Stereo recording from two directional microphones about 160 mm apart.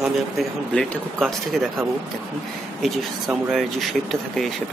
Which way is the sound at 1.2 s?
5° right (ahead or behind).